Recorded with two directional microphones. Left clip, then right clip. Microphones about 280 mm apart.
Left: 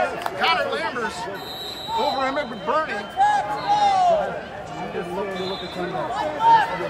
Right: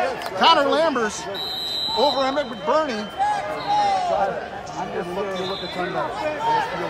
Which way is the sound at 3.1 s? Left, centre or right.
Centre.